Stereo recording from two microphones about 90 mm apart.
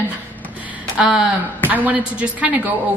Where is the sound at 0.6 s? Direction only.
10° right (ahead or behind).